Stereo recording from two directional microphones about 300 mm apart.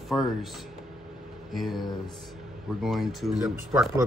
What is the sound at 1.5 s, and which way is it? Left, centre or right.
Speech, centre.